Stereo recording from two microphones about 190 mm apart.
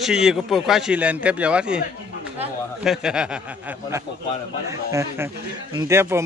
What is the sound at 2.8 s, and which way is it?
Speech, 5° right (ahead or behind).